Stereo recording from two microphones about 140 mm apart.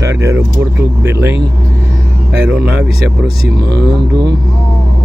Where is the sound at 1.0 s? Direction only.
15° right (ahead or behind).